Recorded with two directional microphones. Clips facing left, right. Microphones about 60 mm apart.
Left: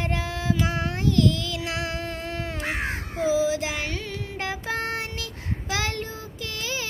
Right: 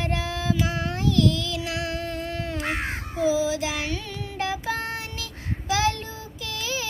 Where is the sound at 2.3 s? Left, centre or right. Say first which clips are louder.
Right 1 dB; left.